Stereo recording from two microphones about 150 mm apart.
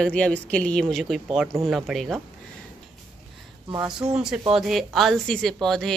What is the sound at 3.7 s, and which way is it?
Speech, 25° right (ahead or behind).